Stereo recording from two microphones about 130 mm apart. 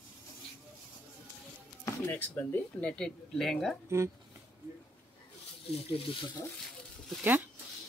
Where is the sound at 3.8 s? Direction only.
20° right (ahead or behind).